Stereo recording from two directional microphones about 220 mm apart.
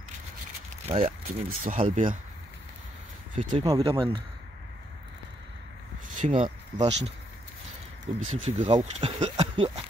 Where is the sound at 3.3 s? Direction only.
20° right (ahead or behind).